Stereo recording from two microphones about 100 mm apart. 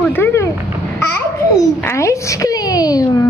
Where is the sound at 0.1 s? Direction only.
25° left (ahead or behind).